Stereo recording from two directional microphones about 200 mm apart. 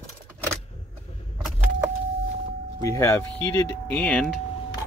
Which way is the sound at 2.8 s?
15° left (ahead or behind).